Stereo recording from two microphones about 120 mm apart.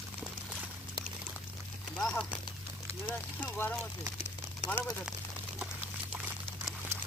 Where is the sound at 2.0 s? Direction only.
5° left (ahead or behind).